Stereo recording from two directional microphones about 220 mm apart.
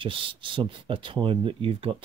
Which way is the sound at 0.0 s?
25° right (ahead or behind).